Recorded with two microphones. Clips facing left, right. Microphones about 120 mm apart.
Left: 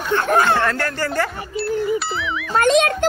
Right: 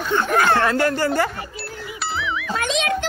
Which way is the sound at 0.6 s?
15° right (ahead or behind).